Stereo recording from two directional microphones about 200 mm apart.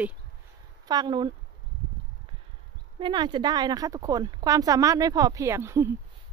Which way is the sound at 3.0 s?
25° right (ahead or behind).